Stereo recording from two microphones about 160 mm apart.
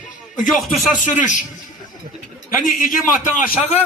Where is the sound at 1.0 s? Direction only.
50° left (ahead or behind).